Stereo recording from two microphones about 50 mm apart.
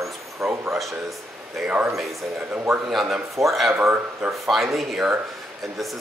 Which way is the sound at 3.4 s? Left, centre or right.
Centre.